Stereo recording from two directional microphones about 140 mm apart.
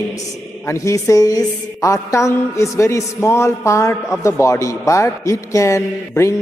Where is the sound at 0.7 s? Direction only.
20° left (ahead or behind).